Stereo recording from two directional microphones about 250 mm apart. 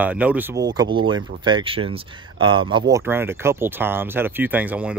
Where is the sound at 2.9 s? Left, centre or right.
Centre.